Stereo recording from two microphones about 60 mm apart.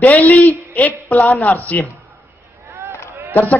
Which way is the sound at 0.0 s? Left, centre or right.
Left.